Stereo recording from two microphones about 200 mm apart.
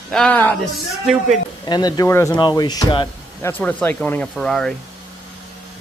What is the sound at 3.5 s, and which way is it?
Speech, 10° left (ahead or behind).